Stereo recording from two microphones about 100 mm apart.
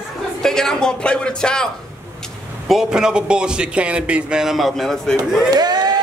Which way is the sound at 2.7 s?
5° right (ahead or behind).